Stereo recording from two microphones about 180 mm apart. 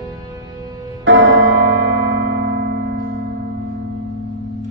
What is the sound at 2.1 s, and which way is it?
Music, 85° right.